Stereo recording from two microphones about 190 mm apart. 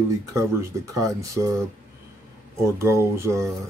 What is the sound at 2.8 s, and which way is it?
Speech, 15° right (ahead or behind).